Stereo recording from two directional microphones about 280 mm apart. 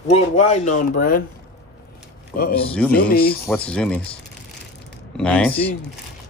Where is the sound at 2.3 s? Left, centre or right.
Left.